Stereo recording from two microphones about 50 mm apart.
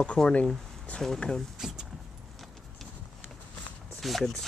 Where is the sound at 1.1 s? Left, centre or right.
Centre.